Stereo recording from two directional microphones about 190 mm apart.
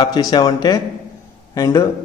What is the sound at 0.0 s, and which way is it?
A man's voice, 20° left (ahead or behind).